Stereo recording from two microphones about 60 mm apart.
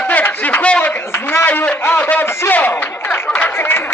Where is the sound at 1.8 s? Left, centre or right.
Left.